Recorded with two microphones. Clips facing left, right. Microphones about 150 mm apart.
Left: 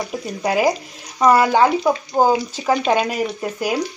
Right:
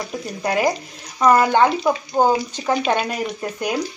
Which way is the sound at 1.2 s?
5° left (ahead or behind).